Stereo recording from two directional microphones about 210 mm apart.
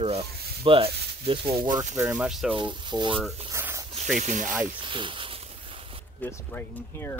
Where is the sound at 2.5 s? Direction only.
20° right (ahead or behind).